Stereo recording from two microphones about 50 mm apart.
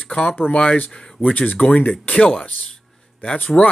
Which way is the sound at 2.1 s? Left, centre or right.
Left.